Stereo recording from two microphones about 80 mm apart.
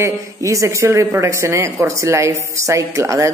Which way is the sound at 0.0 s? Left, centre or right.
Right.